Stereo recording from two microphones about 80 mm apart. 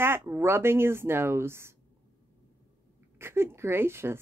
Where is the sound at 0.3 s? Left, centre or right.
Right.